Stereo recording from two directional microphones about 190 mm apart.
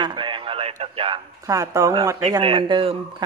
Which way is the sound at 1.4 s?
15° right (ahead or behind).